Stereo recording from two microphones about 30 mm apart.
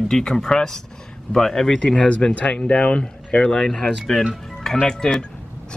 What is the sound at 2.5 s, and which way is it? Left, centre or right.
Speech, left.